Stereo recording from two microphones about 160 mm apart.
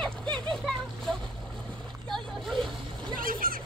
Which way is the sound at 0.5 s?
Centre (ahead or behind).